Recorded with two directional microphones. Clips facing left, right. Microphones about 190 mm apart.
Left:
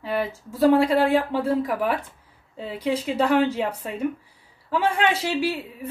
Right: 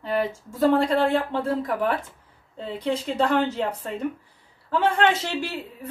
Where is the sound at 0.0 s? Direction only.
5° left (ahead or behind).